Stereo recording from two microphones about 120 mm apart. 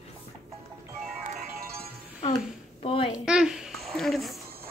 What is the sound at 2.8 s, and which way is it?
Speech, 50° left (ahead or behind).